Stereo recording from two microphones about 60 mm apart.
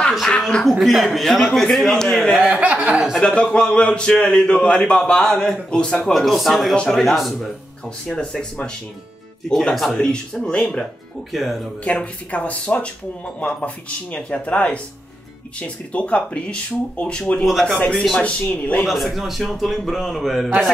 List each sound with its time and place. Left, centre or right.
0.7 s a man's voice: centre
2.3 s speech: right
3.2 s a man's voice: centre
6.0 s a man's voice: centre
8.1 s a man's voice: centre
11.3 s a man's voice: centre
11.8 s speech: left
17.5 s a man's voice: centre
17.7 s a man's voice: centre
18.9 s a man's voice: centre